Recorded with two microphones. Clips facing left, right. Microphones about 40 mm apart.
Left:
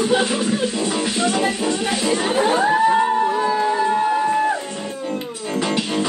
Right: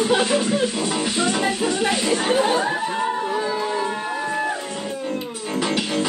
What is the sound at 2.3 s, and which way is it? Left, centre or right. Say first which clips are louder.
Speech: left 3 dB; centre.